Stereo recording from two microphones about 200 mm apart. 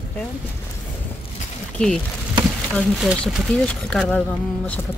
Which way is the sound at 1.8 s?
5° left (ahead or behind).